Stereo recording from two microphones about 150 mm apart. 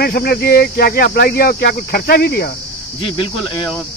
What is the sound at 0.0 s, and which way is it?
Speech, 90° left.